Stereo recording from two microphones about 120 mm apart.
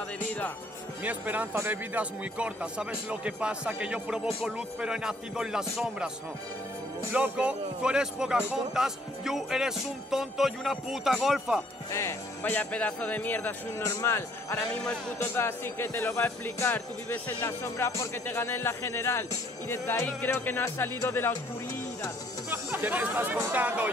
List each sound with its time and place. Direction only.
1.0 s a man's voice: 15° right (ahead or behind)
7.1 s speech: 10° right (ahead or behind)
11.9 s speech: 20° left (ahead or behind)
14.7 s speech: 10° left (ahead or behind)
15.2 s speech: 20° left (ahead or behind)
22.5 s speech: 15° right (ahead or behind)